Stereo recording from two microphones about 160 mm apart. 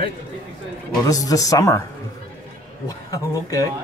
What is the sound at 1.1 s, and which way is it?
Speech, 20° left (ahead or behind).